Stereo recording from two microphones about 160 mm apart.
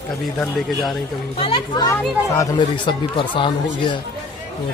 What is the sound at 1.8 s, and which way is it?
Speech, 20° left (ahead or behind).